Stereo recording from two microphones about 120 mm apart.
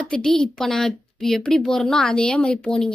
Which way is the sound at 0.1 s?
5° left (ahead or behind).